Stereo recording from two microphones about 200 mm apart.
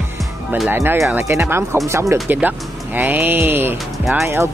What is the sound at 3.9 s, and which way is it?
Music, centre (ahead or behind).